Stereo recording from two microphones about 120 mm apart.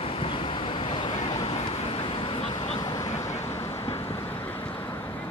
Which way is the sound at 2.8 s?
35° left (ahead or behind).